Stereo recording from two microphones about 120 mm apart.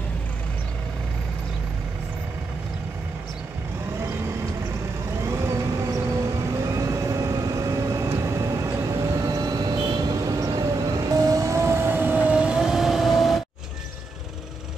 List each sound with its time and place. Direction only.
5.2 s vehicle: 20° right (ahead or behind); by 13.4 s centre (ahead or behind)